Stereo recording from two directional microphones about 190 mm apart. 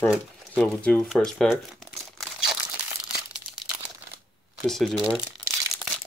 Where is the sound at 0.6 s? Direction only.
5° left (ahead or behind).